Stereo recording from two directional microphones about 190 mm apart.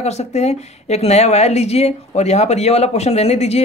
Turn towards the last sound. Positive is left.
turn(degrees=35)  # may be behind; listen again after turning